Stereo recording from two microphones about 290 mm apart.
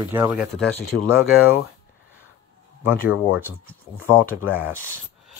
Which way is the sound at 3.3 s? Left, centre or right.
Centre.